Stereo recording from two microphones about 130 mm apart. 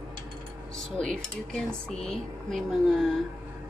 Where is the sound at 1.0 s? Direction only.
5° left (ahead or behind).